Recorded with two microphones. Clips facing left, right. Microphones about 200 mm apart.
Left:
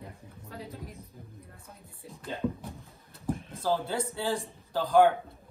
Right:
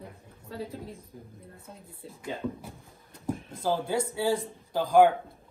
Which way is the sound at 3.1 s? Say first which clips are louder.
Even; 15° right (ahead or behind).